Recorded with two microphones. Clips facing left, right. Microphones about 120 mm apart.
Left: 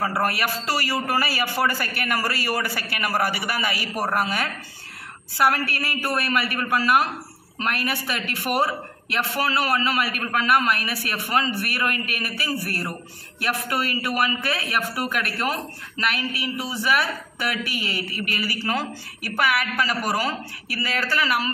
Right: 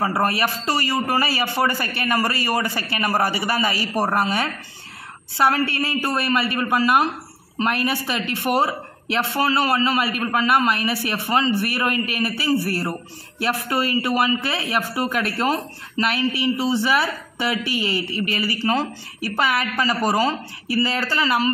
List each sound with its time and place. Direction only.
0.0 s a man's voice: 20° right (ahead or behind)
5.5 s a man's voice: 25° right (ahead or behind)